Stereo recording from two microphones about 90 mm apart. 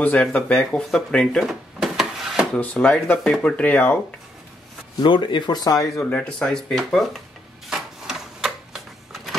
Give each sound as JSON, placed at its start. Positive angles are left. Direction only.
{"t": 0.0, "sound": "speech", "side_deg": 15}
{"t": 1.4, "sound": "a sound", "side_deg": 0}
{"t": 2.5, "sound": "speech", "side_deg": 15}
{"t": 5.0, "sound": "speech", "side_deg": 60}
{"t": 5.9, "sound": "speech", "side_deg": 15}
{"t": 7.7, "sound": "a sound", "side_deg": -5}